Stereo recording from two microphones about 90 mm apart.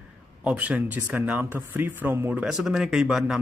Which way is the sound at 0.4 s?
15° right (ahead or behind).